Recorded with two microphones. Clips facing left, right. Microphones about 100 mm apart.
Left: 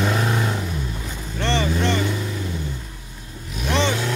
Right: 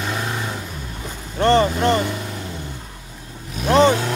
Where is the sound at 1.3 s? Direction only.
45° right (ahead or behind).